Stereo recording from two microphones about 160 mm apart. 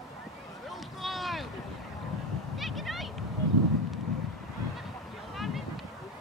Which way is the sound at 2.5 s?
Centre (ahead or behind).